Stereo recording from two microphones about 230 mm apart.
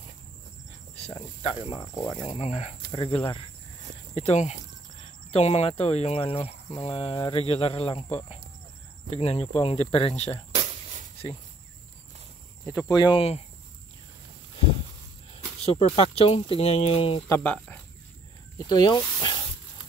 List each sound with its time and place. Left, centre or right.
0.9 s speech: left
10.5 s a sound: right
12.6 s speech: centre
15.3 s speech: left
17.3 s speech: centre